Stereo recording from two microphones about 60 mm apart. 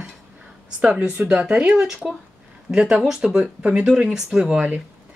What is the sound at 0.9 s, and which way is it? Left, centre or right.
A woman's voice, right.